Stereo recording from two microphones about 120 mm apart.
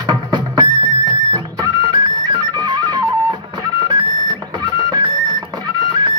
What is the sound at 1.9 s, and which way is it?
Music, 40° right (ahead or behind).